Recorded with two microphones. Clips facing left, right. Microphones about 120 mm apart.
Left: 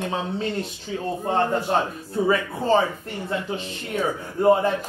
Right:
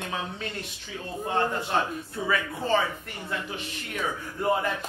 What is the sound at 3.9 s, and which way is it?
Speech, 30° left (ahead or behind).